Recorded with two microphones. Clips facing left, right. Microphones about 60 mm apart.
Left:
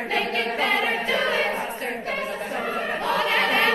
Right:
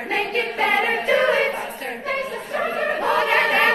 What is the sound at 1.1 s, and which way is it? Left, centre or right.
Choir, right.